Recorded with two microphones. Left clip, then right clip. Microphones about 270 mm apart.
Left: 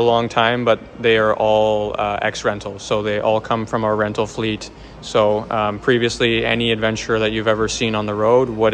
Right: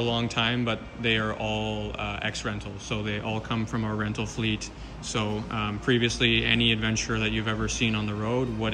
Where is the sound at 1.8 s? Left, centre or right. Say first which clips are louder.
Left 12 dB; centre.